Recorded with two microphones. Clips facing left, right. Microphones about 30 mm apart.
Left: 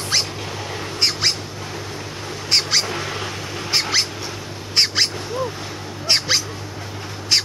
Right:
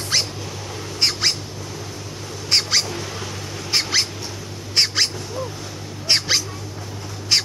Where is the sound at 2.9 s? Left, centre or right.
Left.